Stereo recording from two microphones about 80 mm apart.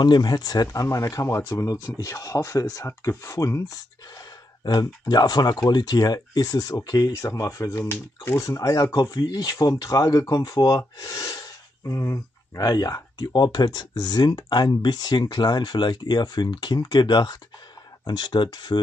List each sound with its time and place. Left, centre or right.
0.0 s speech: left
0.8 s speech: left
2.8 s speech: left
3.2 s speech: left
4.6 s speech: left
11.0 s gasp: left
12.6 s speech: left
13.3 s speech: left